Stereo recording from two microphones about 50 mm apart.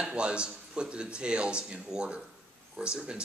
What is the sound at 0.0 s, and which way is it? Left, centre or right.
Speech, centre.